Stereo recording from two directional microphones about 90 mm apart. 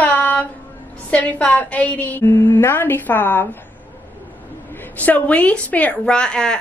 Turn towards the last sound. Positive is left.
turn(degrees=10)  # may be behind; listen again after turning